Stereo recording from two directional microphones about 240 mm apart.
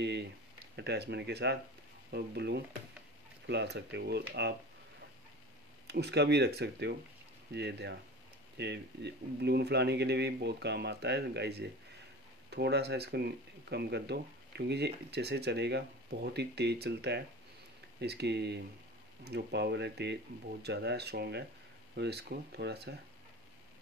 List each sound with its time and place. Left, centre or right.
0.7 s speech: right
5.9 s speech: right